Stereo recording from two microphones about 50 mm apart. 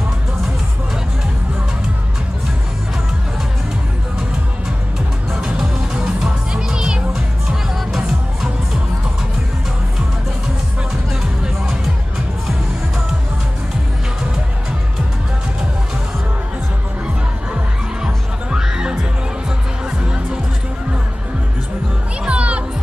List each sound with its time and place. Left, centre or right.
5.3 s music: centre
18.0 s hum: centre
22.2 s music: right